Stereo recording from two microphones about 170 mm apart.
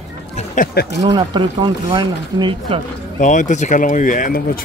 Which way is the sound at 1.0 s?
25° right (ahead or behind).